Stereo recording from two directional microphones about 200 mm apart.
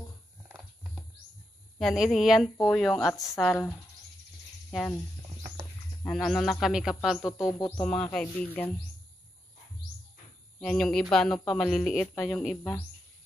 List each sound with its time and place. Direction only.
1.8 s speech: centre (ahead or behind)
4.6 s speech: 5° left (ahead or behind)
6.0 s speech: 5° left (ahead or behind)
7.4 s speech: 15° left (ahead or behind)
10.6 s speech: 5° left (ahead or behind)